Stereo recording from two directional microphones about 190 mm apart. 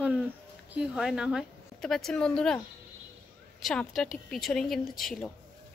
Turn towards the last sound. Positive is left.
turn(degrees=0)  # may be behind; listen again after turning